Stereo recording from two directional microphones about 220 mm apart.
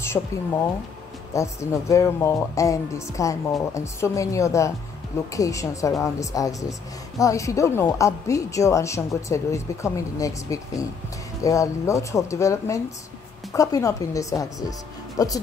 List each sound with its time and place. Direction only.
0.0 s a woman's voice: 10° left (ahead or behind)